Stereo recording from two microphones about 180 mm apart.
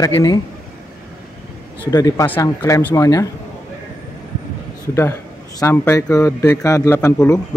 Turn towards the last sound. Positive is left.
turn(degrees=15)  # may be behind; listen again after turning